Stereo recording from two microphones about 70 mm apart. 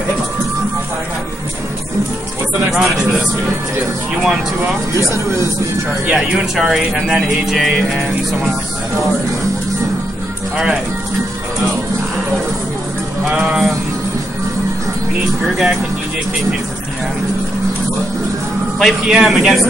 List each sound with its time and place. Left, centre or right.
2.7 s speech: centre
4.9 s speech: right
6.0 s speech: centre
13.3 s speech: centre
15.4 s speech: centre
18.8 s speech: centre